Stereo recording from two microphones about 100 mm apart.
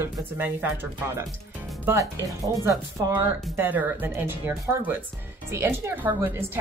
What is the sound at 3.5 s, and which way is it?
Speech, 20° right (ahead or behind).